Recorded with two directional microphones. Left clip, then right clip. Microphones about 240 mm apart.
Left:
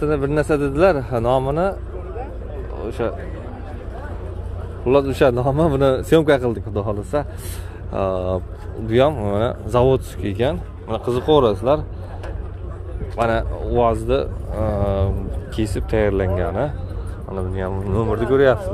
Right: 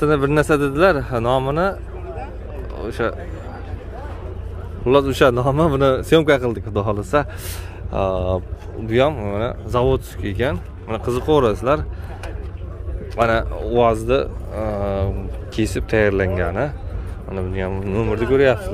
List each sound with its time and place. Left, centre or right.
0.0 s speech: centre
2.8 s speech: centre
4.8 s speech: centre
7.9 s speech: centre
9.2 s speech: centre
13.1 s speech: centre